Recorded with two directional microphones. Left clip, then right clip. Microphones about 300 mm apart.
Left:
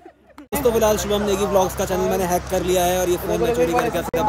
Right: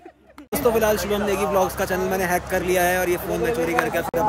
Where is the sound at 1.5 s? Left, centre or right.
Centre.